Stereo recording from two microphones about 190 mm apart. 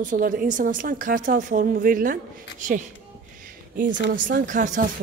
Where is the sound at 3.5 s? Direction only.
45° right (ahead or behind).